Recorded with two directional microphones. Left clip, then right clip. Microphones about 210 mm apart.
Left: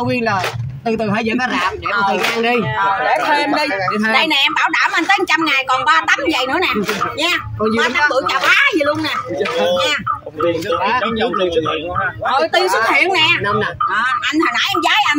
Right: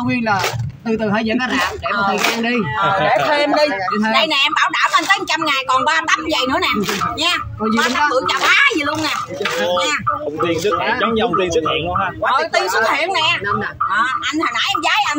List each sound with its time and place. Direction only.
0.8 s speech: 50° left (ahead or behind)
2.8 s speech: 5° left (ahead or behind)
12.3 s speech: 5° left (ahead or behind)
14.4 s speech: centre (ahead or behind)